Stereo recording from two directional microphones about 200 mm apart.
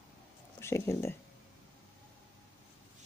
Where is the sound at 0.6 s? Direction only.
15° left (ahead or behind).